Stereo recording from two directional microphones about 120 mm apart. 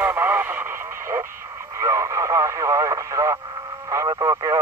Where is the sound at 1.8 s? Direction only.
25° right (ahead or behind).